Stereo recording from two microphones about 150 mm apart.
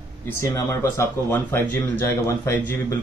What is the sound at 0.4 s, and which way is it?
Speech, 20° left (ahead or behind).